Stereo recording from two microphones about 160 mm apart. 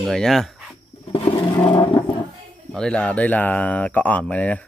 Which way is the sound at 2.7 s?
5° left (ahead or behind).